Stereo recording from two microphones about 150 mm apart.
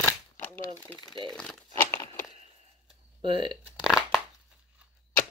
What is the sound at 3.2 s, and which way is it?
Speech, 35° right (ahead or behind).